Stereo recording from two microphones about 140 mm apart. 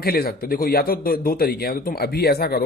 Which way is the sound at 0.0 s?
90° left.